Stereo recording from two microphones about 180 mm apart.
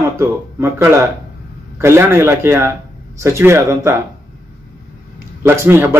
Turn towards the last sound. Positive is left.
turn(degrees=-15)  # may be behind; listen again after turning